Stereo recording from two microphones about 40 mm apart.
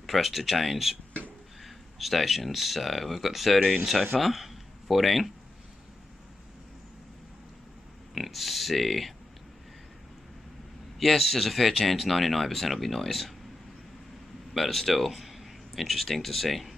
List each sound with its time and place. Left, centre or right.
0.0 s speech: centre
8.1 s speech: centre
11.0 s speech: centre
14.5 s speech: centre